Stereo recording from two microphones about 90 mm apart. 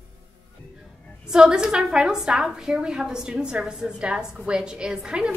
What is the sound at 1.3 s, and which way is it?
A woman's voice, 10° right (ahead or behind).